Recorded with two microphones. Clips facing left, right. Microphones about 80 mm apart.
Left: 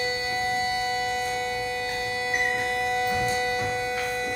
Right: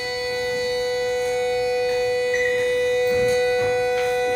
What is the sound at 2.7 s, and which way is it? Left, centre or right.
Music, left.